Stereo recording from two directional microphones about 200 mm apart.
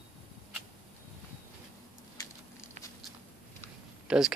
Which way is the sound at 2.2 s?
20° left (ahead or behind).